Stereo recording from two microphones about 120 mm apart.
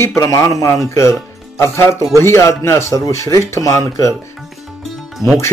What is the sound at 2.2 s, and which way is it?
Speech, 20° left (ahead or behind).